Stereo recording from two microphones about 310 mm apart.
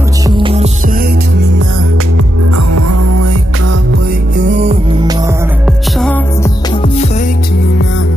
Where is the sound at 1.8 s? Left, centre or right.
Right.